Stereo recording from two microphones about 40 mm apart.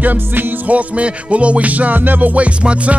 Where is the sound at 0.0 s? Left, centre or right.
Right.